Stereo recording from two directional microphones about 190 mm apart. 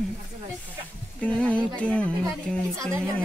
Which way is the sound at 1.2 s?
5° left (ahead or behind).